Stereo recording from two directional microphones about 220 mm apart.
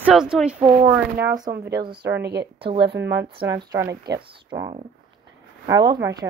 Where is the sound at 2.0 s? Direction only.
50° right (ahead or behind).